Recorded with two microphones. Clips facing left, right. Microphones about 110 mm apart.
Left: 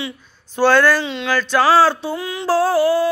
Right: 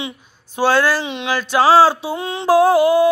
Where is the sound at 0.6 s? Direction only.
10° right (ahead or behind).